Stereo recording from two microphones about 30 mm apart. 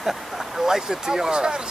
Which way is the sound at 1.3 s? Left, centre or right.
Right.